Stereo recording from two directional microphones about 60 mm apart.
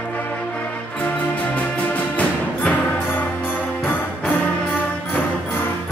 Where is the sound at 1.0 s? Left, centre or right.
Left.